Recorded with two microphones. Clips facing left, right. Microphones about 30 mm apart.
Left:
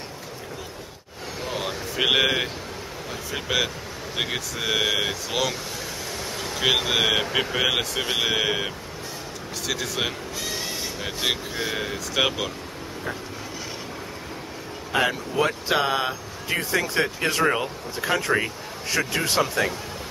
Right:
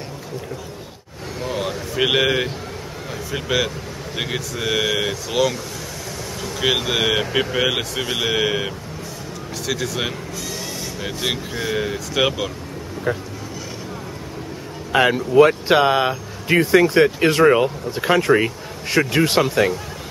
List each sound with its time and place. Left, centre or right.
1.4 s a sound: centre
3.3 s speech: centre
6.6 s speech: centre
15.0 s speech: right
16.4 s speech: right
19.4 s speech: centre